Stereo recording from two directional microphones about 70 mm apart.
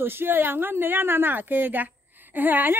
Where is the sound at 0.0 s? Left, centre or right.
Right.